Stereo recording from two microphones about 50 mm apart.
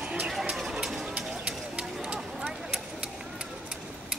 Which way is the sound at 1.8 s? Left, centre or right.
Centre.